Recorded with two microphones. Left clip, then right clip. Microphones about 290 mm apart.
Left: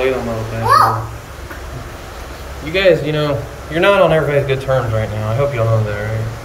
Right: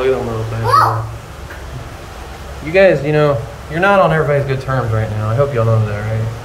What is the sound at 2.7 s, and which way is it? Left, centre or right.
A man's voice, centre.